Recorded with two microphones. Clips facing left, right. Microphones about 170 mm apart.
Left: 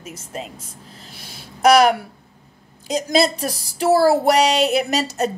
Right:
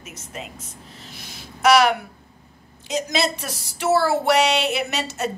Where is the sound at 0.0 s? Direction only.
35° left (ahead or behind).